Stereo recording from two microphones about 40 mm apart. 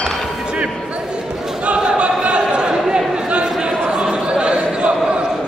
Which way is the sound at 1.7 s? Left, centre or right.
Right.